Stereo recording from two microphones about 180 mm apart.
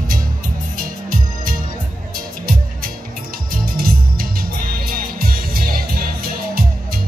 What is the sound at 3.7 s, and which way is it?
Music, 55° right (ahead or behind).